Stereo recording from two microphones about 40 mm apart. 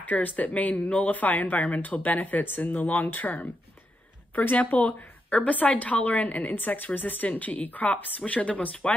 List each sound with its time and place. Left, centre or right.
0.0 s a woman's voice: left